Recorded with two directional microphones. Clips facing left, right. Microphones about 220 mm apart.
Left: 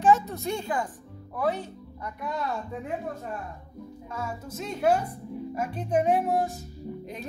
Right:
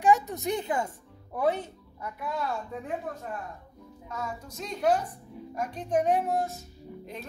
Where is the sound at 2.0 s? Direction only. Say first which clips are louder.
Left 1 dB; centre (ahead or behind).